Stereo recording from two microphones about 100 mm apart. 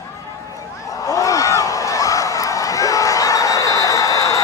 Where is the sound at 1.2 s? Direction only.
35° left (ahead or behind).